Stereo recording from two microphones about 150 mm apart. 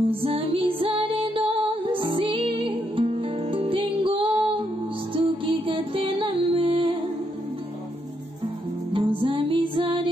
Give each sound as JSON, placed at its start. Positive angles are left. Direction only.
{"t": 0.1, "sound": "music", "side_deg": -35}
{"t": 8.9, "sound": "music", "side_deg": -35}